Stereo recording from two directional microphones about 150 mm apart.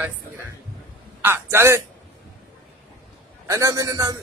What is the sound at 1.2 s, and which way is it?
Speech, 15° right (ahead or behind).